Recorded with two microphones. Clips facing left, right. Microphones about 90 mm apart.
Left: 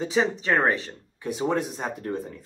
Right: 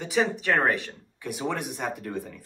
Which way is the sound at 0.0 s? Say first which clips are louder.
Left 1 dB; 25° left (ahead or behind).